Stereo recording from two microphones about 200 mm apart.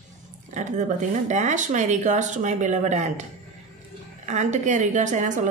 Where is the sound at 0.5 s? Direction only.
35° right (ahead or behind).